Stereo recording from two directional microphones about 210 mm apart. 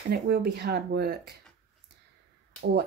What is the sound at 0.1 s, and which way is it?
Speech, 50° right (ahead or behind).